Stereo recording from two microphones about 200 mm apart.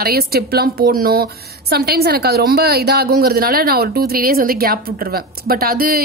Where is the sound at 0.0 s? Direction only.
50° right (ahead or behind).